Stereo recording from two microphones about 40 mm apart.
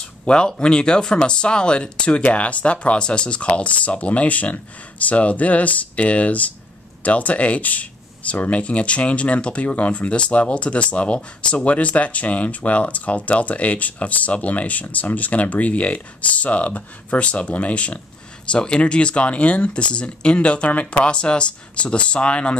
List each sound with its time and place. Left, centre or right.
0.2 s speech: centre; by 3.0 s left
3.0 s speech: left